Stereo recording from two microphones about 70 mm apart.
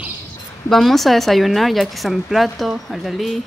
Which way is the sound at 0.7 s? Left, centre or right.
Centre.